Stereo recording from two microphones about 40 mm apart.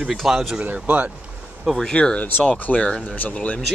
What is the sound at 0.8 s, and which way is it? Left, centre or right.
Speech, right.